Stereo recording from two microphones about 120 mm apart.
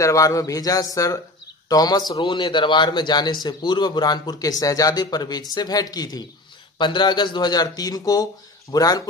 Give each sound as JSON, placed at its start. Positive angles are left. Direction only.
{"t": 0.0, "sound": "a man's voice", "side_deg": 25}